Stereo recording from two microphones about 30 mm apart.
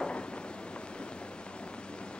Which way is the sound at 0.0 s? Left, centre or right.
Left.